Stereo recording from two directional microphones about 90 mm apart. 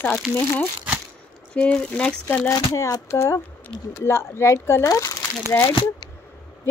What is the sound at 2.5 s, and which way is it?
Speech, 40° left (ahead or behind).